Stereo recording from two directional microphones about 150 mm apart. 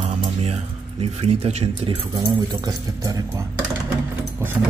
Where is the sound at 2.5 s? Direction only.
20° right (ahead or behind).